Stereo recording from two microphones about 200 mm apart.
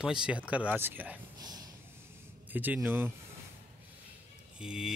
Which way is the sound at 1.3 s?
20° right (ahead or behind).